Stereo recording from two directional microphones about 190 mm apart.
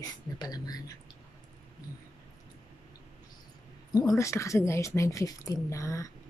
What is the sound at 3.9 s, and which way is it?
Speech, 20° left (ahead or behind).